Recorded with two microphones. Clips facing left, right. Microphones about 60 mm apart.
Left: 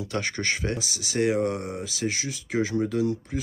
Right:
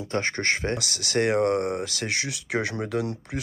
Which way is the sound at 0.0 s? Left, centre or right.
Right.